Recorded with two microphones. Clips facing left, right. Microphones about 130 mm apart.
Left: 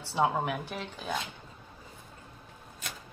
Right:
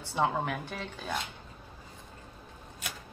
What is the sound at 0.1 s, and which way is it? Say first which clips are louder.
Speech: left 1 dB; 10° left (ahead or behind).